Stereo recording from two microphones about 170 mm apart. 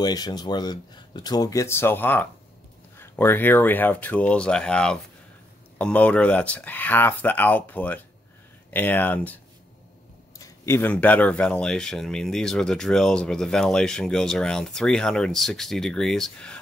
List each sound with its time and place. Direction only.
0.0 s speech: 25° left (ahead or behind)
10.4 s speech: 15° left (ahead or behind)